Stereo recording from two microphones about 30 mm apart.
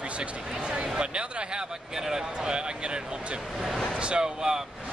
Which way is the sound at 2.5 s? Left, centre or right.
Right.